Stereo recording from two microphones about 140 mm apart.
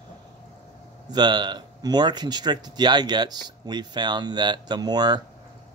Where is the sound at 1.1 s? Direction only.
30° right (ahead or behind).